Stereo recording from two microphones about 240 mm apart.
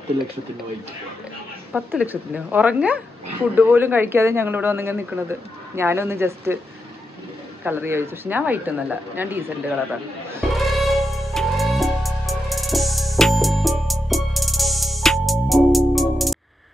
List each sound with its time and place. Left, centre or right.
1.7 s speech: centre
7.6 s speech: centre
10.3 s music: centre